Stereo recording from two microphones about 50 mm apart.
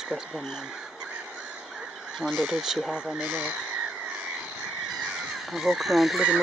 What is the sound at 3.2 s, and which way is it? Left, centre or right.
Speech, right.